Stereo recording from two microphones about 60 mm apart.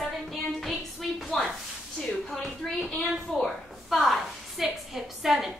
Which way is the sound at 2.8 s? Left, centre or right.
Left.